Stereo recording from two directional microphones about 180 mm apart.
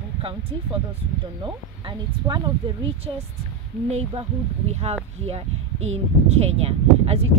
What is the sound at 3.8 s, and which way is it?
Speech, 35° right (ahead or behind).